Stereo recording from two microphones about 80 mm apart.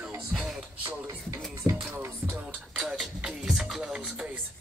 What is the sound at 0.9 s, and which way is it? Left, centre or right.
Music, right.